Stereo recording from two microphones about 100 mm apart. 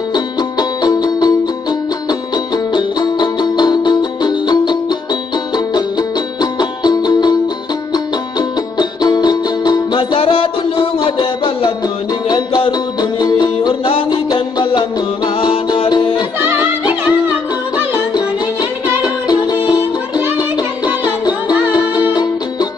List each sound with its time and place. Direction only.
0.1 s music: 45° left (ahead or behind)
9.9 s music: 65° left (ahead or behind)
10.8 s music: 50° left (ahead or behind)
12.3 s music: 45° left (ahead or behind)
13.8 s music: 55° left (ahead or behind)
16.3 s music: 20° right (ahead or behind)
17.9 s music: 45° left (ahead or behind)